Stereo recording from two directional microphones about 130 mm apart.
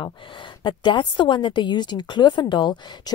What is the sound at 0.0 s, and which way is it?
A woman's voice, 40° left (ahead or behind).